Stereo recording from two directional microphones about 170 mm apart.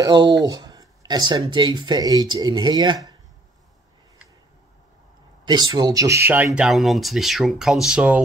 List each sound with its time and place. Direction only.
0.0 s speech: 25° right (ahead or behind)
5.4 s speech: 25° right (ahead or behind); by 8.2 s 5° right (ahead or behind)